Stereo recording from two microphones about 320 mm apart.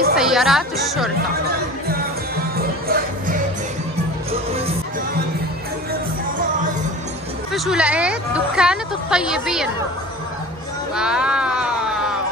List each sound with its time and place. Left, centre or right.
0.1 s speech: centre
2.5 s music: right
7.5 s speech: centre
11.0 s a sound: centre